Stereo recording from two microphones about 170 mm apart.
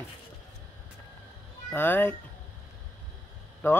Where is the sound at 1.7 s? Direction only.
10° left (ahead or behind).